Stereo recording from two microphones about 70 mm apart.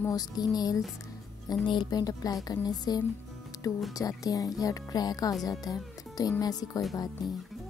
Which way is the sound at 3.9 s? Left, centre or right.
Left.